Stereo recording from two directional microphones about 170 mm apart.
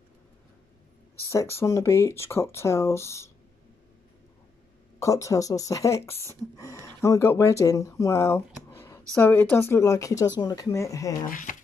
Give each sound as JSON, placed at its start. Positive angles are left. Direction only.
{"t": 1.3, "sound": "speech", "side_deg": 15}
{"t": 4.9, "sound": "speech", "side_deg": 20}
{"t": 11.2, "sound": "speech", "side_deg": 50}